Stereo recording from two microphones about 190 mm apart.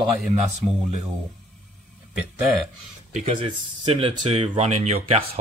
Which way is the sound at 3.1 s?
30° right (ahead or behind).